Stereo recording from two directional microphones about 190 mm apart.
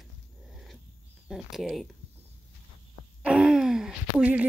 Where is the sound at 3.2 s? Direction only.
5° right (ahead or behind).